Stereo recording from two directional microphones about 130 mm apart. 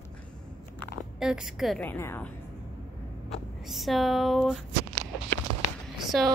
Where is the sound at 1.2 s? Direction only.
5° right (ahead or behind).